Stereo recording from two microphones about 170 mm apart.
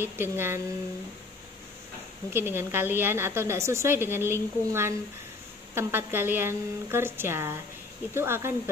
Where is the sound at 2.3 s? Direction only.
15° right (ahead or behind).